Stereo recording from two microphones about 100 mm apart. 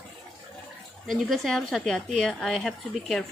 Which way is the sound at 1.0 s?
Centre (ahead or behind).